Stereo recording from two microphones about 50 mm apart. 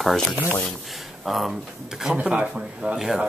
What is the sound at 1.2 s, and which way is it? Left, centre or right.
Speech, centre.